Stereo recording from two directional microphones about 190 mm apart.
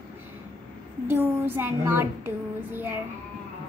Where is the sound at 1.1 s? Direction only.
10° right (ahead or behind).